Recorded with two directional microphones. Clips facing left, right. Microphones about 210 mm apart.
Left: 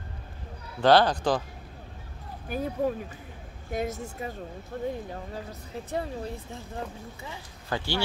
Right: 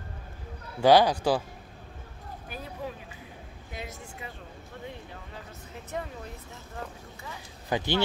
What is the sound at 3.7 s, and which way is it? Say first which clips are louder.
A woman's voice: left 10 dB; 45° left (ahead or behind).